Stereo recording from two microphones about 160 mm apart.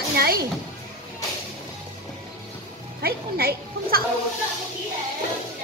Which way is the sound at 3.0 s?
75° right (ahead or behind).